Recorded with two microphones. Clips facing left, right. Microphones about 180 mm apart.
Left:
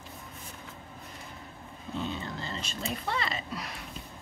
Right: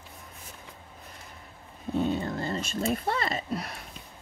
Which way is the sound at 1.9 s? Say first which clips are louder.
Right 8 dB; 50° right (ahead or behind).